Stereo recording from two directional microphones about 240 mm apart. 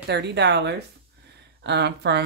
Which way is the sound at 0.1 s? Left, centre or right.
Right.